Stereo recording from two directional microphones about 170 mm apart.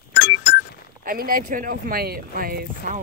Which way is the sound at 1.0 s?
60° right (ahead or behind).